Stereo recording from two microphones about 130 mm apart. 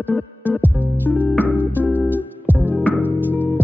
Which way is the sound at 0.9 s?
15° left (ahead or behind).